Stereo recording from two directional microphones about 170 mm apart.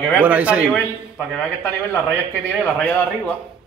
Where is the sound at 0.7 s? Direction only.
5° left (ahead or behind).